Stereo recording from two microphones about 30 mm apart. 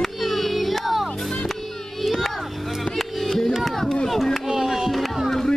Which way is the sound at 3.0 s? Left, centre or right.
Centre.